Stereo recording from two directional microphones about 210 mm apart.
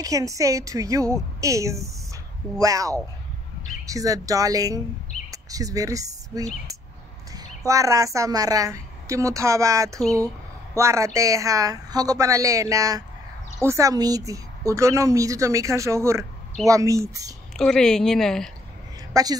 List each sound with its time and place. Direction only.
0.0 s a woman's voice: 15° right (ahead or behind)
17.6 s a woman's voice: centre (ahead or behind)
19.1 s a woman's voice: 15° right (ahead or behind)